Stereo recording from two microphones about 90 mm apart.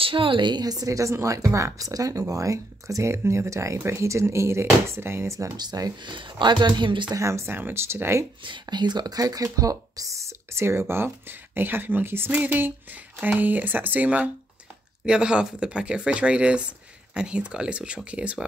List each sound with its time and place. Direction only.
0.0 s a woman's voice: 75° right (ahead or behind); by 5.5 s 30° right (ahead or behind)
5.6 s speech: 50° right (ahead or behind)
7.2 s speech: 30° right (ahead or behind)
8.5 s a woman's voice: 55° right (ahead or behind); by 18.4 s 15° right (ahead or behind)